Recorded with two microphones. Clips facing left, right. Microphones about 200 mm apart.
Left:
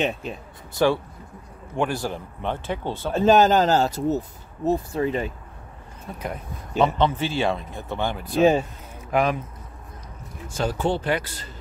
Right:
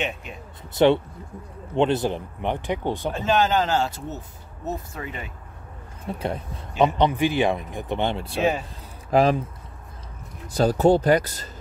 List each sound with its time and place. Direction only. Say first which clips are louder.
0.0 s speech: left 4 dB; 35° left (ahead or behind)
0.7 s speech: right 3 dB; 20° right (ahead or behind)
3.1 s speech: left 6 dB; 40° left (ahead or behind)
6.1 s speech: right 3 dB; 30° right (ahead or behind)
6.8 s speech: right 1 dB; 15° right (ahead or behind)
8.4 s speech: left 6 dB; 30° left (ahead or behind)
9.1 s speech: right 3 dB; 35° right (ahead or behind)
10.5 s speech: right 7 dB; 35° right (ahead or behind)